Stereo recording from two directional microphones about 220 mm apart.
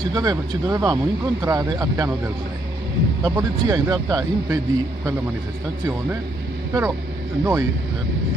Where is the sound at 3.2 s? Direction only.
15° right (ahead or behind).